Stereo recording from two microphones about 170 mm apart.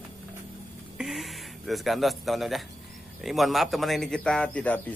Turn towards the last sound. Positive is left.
turn(degrees=10)  # may be behind; listen again after turning